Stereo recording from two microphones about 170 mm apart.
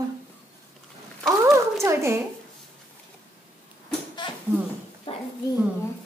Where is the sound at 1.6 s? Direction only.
15° right (ahead or behind).